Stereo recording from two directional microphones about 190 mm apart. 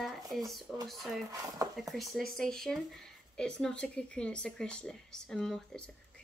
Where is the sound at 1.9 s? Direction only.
Centre (ahead or behind).